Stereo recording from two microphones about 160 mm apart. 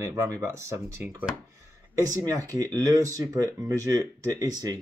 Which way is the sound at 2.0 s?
20° right (ahead or behind).